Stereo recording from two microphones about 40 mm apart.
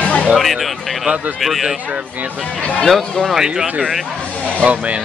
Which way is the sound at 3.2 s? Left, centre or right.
Centre.